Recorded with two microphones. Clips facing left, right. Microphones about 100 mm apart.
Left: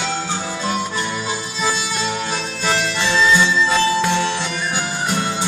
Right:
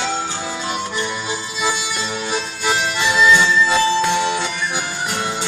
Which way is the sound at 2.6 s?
15° right (ahead or behind).